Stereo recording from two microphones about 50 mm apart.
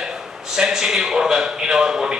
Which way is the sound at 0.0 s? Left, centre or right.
Centre.